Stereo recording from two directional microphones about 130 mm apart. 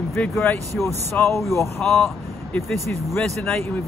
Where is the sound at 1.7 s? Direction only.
Centre (ahead or behind).